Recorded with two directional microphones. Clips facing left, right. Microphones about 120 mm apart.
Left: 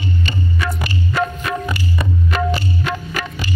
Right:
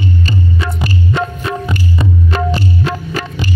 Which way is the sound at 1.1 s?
25° right (ahead or behind).